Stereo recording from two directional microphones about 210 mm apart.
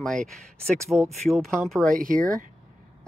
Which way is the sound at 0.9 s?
5° right (ahead or behind).